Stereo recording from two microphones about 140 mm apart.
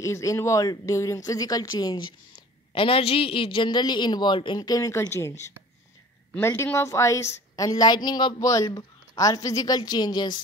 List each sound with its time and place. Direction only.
0.0 s a woman's voice: 20° left (ahead or behind)
6.3 s a woman's voice: 20° left (ahead or behind)